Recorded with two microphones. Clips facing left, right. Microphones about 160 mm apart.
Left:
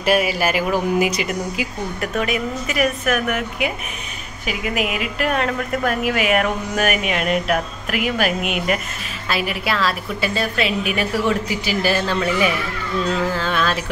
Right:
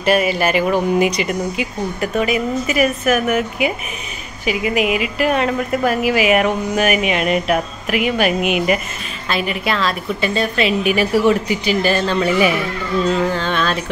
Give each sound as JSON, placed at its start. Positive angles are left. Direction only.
{"t": 0.0, "sound": "a woman's voice", "side_deg": 5}